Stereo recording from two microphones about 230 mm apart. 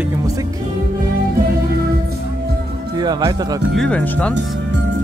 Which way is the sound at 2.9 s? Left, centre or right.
Centre.